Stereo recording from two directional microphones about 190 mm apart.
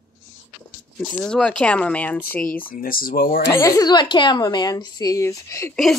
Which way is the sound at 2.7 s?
50° left (ahead or behind).